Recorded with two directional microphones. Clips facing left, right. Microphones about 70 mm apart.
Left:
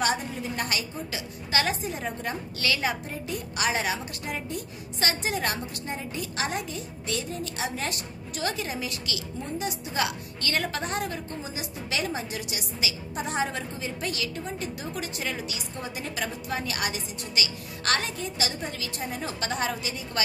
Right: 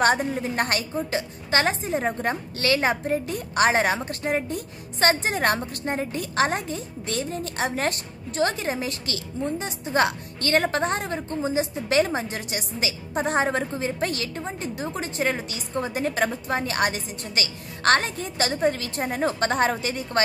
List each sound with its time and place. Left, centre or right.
0.0 s a woman's voice: right